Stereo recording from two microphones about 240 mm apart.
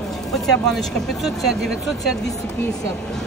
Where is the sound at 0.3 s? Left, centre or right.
Centre.